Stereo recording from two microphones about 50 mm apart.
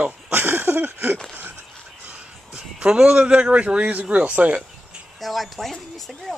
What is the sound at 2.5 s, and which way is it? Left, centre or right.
A man's voice, centre.